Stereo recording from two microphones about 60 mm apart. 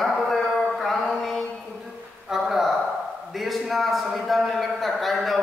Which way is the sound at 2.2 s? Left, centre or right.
Centre.